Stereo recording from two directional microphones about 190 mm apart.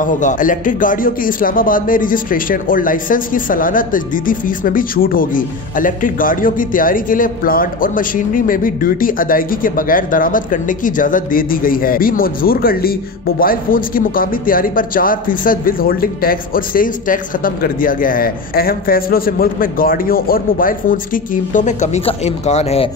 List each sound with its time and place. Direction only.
0.0 s speech: 45° left (ahead or behind)